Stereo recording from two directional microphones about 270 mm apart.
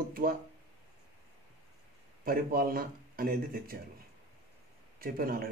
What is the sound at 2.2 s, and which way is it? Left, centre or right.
A man's voice, right.